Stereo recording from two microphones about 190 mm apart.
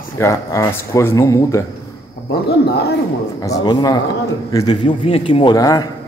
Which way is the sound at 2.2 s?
60° left (ahead or behind).